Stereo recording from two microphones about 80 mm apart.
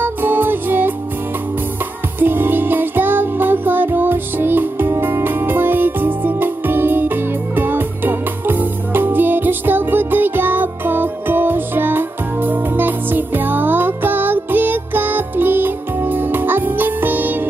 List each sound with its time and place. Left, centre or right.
0.0 s music: right
2.1 s music: right